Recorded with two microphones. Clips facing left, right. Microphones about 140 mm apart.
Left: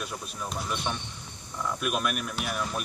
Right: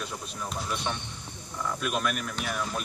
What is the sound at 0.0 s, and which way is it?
Speech, 5° left (ahead or behind).